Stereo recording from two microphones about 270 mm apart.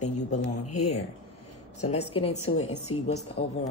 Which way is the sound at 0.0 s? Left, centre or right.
Left.